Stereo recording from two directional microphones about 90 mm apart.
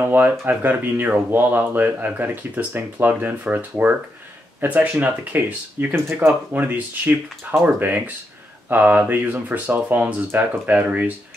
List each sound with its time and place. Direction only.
0.0 s speech: 25° right (ahead or behind)